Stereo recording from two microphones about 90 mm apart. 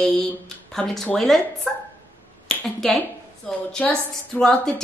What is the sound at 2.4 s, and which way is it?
Finger snapping, 5° left (ahead or behind).